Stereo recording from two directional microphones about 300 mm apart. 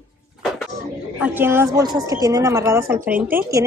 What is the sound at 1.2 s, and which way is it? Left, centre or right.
A woman's voice, centre.